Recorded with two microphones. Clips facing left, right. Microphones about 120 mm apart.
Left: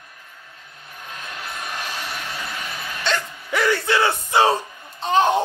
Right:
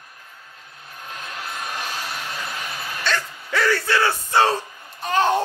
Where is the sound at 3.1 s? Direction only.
20° left (ahead or behind).